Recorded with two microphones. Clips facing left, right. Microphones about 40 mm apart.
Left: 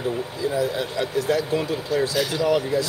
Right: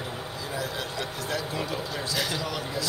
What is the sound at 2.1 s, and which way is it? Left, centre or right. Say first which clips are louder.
Speech: left 6 dB; centre.